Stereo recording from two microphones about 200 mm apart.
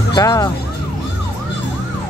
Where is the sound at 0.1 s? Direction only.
20° left (ahead or behind).